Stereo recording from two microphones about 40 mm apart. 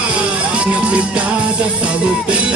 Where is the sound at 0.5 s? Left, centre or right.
Right.